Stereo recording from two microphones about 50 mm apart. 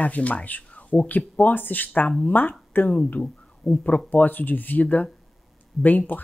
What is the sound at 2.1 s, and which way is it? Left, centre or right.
Speech, left.